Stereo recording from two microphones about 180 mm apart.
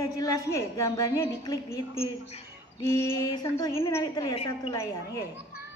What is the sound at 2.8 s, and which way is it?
A woman's voice, 20° left (ahead or behind).